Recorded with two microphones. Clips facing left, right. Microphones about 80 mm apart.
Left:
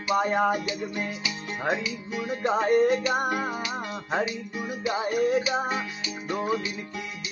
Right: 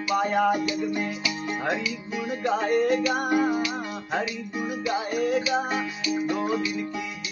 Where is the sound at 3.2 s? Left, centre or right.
Centre.